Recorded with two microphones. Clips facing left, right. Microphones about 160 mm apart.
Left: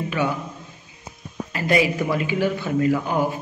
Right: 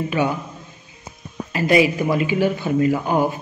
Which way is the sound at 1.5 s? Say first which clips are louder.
Right 4 dB; 15° right (ahead or behind).